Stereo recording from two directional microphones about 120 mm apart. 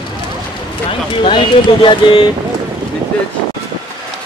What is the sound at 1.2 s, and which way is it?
Speech, 45° left (ahead or behind).